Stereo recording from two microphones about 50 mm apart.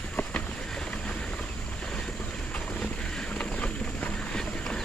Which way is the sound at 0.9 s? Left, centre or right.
Left.